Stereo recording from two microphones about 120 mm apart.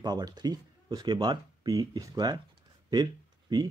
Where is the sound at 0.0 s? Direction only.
35° right (ahead or behind).